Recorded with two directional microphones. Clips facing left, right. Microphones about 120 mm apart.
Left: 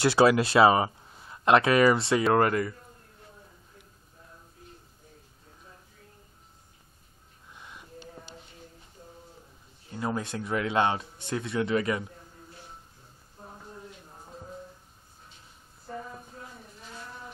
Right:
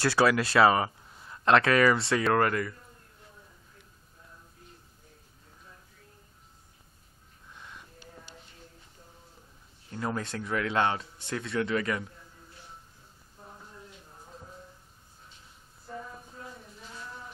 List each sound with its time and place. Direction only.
0.0 s speech: 20° left (ahead or behind)
7.5 s a sound: 10° left (ahead or behind)
8.0 s crow: 25° left (ahead or behind)
9.8 s a man's voice: 15° left (ahead or behind)